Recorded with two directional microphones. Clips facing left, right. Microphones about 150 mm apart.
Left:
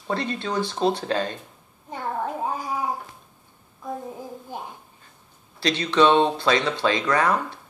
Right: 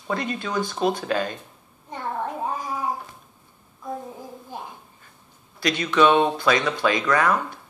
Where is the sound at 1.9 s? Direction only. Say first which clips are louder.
Left 1 dB; 10° left (ahead or behind).